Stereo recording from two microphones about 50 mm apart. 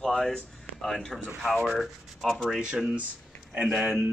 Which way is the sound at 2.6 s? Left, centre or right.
Centre.